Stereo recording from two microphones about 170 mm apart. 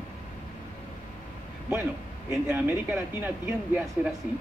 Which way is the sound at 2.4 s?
10° right (ahead or behind).